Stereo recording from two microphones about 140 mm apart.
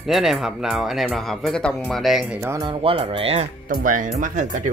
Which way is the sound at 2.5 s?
35° right (ahead or behind).